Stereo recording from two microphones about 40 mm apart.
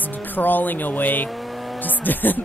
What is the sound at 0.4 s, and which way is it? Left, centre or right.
Speech, left.